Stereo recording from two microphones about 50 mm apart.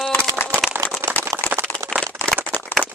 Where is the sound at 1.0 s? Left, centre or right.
Right.